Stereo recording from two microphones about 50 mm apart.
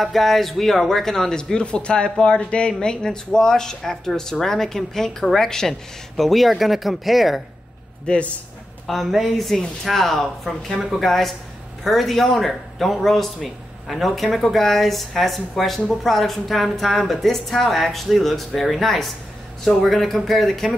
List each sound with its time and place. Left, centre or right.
0.0 s a man's voice: centre
8.1 s a man's voice: centre
8.8 s a man's voice: centre